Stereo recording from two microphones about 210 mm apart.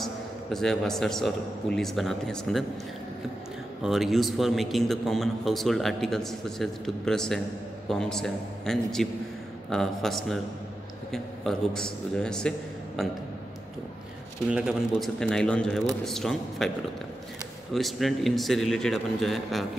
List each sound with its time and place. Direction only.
0.0 s a man's voice: centre (ahead or behind)
3.8 s a man's voice: centre (ahead or behind)
14.5 s a man's voice: 5° right (ahead or behind)
17.7 s a man's voice: centre (ahead or behind)